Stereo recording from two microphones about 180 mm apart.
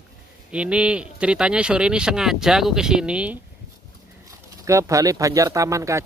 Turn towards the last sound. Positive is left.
turn(degrees=-15)  # may be behind; listen again after turning